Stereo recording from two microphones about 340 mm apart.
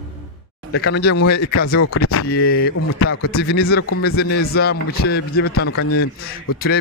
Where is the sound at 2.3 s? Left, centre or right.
Left.